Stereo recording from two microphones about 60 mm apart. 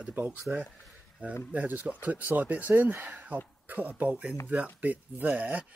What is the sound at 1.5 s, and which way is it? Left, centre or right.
Speech, right.